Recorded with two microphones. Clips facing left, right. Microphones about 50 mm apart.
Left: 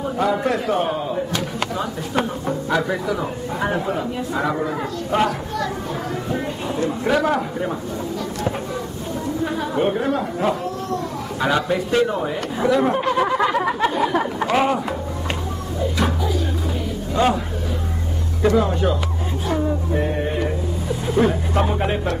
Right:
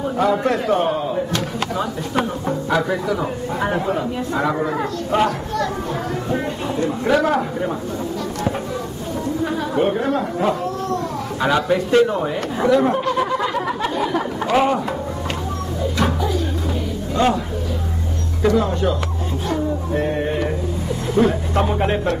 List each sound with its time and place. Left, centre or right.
0.2 s speech: centre
1.8 s speech: centre
5.1 s speech: centre
7.1 s speech: centre
9.6 s speech: centre
12.9 s a sound: centre
17.1 s a man's voice: centre
18.4 s a sound: centre
21.3 s speech: centre